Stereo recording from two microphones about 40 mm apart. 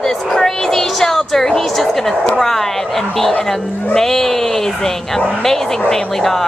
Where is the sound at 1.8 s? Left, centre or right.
Centre.